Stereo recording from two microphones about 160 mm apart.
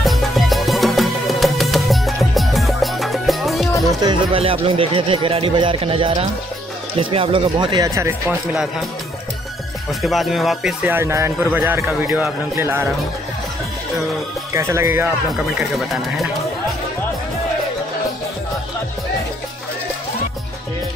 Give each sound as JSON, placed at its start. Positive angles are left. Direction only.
{"t": 0.0, "sound": "music", "side_deg": 0}
{"t": 4.0, "sound": "speech", "side_deg": -30}
{"t": 9.8, "sound": "speech", "side_deg": 0}
{"t": 14.5, "sound": "speech", "side_deg": -15}
{"t": 15.7, "sound": "speech", "side_deg": 0}